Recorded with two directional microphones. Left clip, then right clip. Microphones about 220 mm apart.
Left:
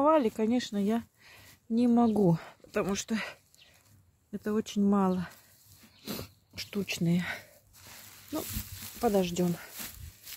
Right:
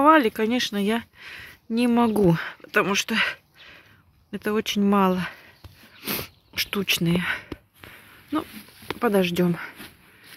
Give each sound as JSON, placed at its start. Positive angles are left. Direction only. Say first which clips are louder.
{"t": 0.0, "sound": "speech", "louder": "right 8 dB", "side_deg": 0}
{"t": 2.0, "sound": "speech", "louder": "right 6 dB", "side_deg": -15}
{"t": 2.3, "sound": "speech", "louder": "right 10 dB", "side_deg": -5}
{"t": 9.0, "sound": "speech", "louder": "right 6 dB", "side_deg": -15}